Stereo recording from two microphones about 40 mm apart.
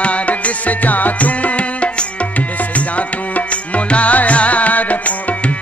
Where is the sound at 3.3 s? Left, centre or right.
Left.